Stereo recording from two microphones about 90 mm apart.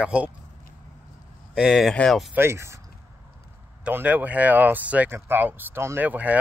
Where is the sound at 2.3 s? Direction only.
30° right (ahead or behind).